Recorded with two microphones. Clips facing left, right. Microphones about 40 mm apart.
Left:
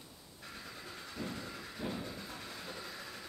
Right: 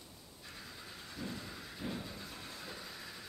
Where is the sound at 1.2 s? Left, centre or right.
Left.